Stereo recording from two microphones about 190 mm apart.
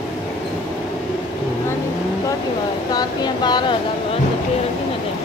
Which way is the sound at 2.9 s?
20° left (ahead or behind).